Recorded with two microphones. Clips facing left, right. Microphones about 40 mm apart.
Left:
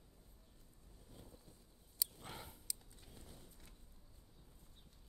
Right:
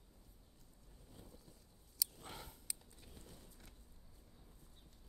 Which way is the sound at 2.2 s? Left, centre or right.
Centre.